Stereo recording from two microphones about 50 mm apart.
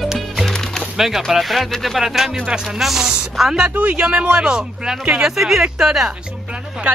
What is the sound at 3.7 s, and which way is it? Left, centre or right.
Speech, right.